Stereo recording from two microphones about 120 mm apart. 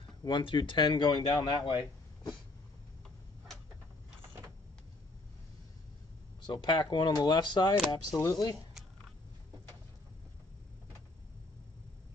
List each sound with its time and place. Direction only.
0.2 s speech: 40° left (ahead or behind)
6.4 s speech: 40° left (ahead or behind)